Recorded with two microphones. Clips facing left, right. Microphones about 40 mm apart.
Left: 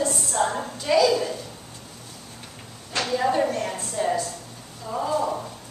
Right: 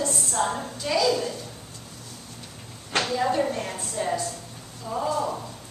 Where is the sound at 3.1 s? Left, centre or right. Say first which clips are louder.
Left 3 dB; centre.